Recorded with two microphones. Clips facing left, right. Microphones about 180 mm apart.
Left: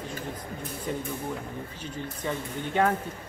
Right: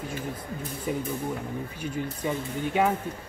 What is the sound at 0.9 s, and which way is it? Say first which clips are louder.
Speech: right 3 dB; 10° right (ahead or behind).